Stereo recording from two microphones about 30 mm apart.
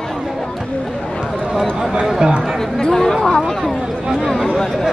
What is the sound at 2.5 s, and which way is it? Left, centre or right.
Speech, centre.